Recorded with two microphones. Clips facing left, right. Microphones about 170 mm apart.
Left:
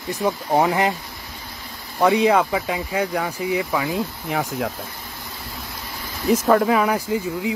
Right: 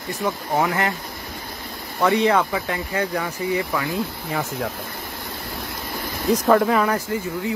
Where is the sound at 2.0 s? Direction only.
15° left (ahead or behind).